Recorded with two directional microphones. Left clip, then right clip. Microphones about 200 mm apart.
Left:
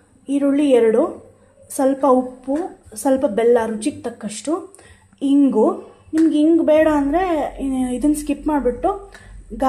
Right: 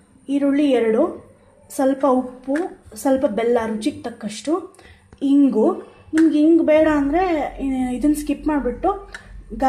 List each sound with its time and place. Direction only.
0.3 s a woman's voice: 5° left (ahead or behind)